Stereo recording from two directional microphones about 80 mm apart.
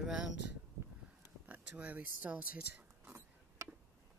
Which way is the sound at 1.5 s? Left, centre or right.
Centre.